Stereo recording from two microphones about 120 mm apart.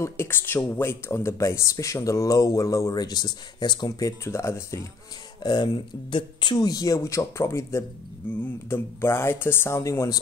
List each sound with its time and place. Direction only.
0.0 s speech: 20° left (ahead or behind)
5.4 s speech: 35° left (ahead or behind)